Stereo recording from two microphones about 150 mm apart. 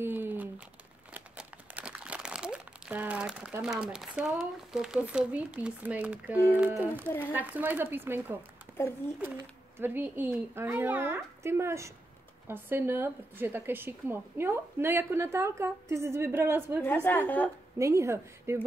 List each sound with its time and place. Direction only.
0.0 s crumpling: 15° right (ahead or behind)
3.6 s a woman's voice: 5° right (ahead or behind)
8.8 s a woman's voice: 15° left (ahead or behind)
9.4 s a woman's voice: 15° right (ahead or behind)
16.8 s a woman's voice: 15° left (ahead or behind)
17.7 s a woman's voice: 20° right (ahead or behind)